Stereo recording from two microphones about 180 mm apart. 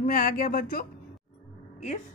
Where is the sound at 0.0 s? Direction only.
50° left (ahead or behind).